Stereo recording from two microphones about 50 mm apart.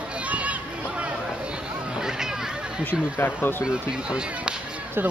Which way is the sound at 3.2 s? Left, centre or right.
Left.